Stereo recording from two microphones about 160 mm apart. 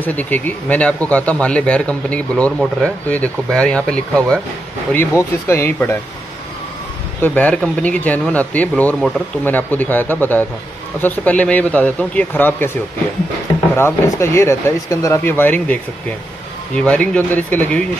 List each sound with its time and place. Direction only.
0.0 s speech: 10° left (ahead or behind)
7.2 s speech: 10° left (ahead or behind)
13.7 s speech: 15° left (ahead or behind)